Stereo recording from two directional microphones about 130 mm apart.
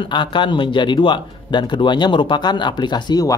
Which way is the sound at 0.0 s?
40° left (ahead or behind).